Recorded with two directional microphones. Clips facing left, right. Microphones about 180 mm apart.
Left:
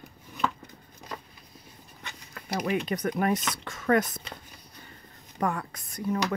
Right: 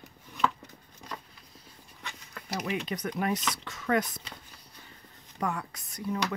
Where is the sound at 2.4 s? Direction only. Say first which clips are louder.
Left 4 dB; 55° left (ahead or behind).